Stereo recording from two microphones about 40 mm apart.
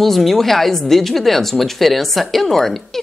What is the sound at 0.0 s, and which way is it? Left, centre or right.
A woman's voice, centre.